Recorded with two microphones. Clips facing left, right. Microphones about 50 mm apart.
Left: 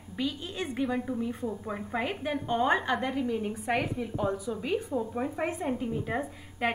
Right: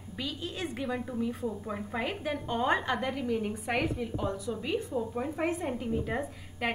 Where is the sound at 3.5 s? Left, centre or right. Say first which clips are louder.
Left 1 dB; centre.